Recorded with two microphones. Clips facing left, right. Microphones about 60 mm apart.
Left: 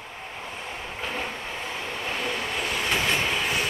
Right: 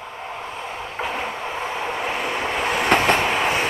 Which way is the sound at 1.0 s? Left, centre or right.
Right.